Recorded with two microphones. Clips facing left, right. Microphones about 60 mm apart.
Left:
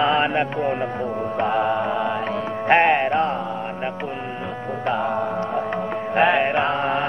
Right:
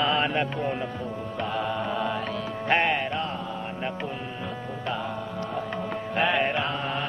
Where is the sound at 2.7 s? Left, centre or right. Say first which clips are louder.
Left 8 dB; left.